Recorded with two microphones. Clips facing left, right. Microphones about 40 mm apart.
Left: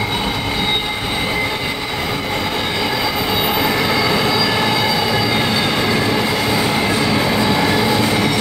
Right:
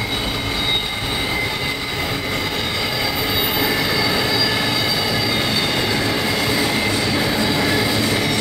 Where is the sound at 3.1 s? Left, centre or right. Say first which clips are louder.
Left 3 dB; left.